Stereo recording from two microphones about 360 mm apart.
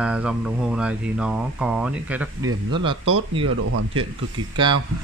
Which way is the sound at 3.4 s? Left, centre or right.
Right.